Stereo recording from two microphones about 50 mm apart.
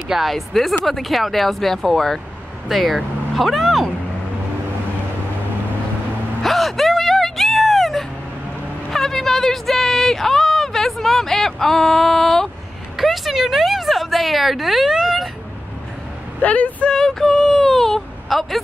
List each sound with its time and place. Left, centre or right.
0.1 s speech: centre
6.4 s a sound: centre
16.3 s speech: left
16.9 s whimper: centre